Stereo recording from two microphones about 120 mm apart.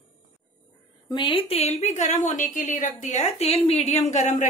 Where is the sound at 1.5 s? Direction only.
60° left (ahead or behind).